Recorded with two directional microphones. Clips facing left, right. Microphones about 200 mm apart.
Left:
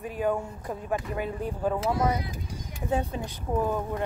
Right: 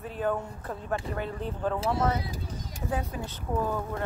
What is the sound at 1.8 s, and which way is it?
Speech, 30° right (ahead or behind).